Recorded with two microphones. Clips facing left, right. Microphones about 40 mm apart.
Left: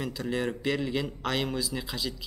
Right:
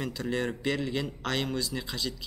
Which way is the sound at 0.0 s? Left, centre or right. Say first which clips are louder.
Even; centre.